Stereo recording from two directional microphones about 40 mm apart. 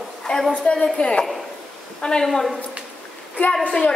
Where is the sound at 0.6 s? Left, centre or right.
Left.